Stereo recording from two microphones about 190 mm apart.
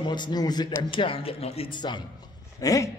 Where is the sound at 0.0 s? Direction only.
25° left (ahead or behind).